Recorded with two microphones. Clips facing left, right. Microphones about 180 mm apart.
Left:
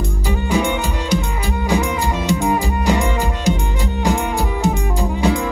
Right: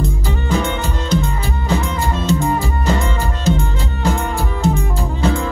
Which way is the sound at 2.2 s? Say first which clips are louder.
Even; 15° left (ahead or behind).